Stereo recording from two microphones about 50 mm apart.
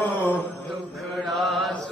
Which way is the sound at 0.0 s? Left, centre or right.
Left.